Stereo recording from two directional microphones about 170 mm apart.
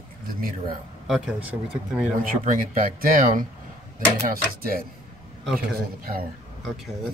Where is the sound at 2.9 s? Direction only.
55° right (ahead or behind).